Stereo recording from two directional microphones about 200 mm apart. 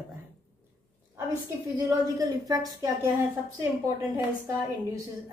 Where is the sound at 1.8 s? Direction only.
20° right (ahead or behind).